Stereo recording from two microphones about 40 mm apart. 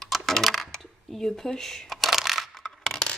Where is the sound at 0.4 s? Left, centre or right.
Centre.